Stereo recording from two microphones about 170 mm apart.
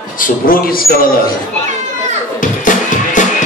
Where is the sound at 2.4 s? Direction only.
50° left (ahead or behind).